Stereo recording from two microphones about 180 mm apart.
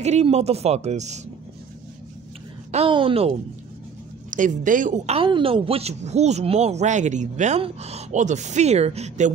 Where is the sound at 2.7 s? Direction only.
30° right (ahead or behind).